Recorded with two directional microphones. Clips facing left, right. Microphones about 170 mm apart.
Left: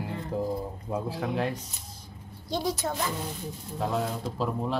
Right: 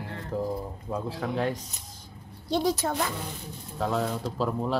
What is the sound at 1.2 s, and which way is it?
Speech, centre (ahead or behind).